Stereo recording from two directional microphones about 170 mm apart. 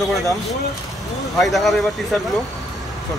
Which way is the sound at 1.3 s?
Centre (ahead or behind).